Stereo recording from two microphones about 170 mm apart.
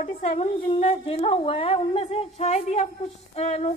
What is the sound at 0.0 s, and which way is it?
A woman's voice, 40° left (ahead or behind).